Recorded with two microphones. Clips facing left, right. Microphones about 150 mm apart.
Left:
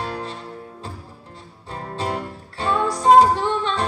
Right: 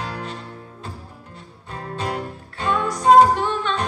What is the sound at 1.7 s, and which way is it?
Music, 30° left (ahead or behind).